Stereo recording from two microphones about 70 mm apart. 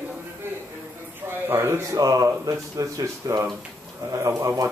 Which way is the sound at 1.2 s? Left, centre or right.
Right.